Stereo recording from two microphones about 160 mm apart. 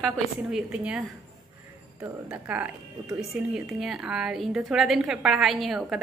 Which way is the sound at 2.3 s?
10° right (ahead or behind).